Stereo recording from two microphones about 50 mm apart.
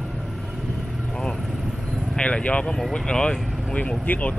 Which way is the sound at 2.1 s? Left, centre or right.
Left.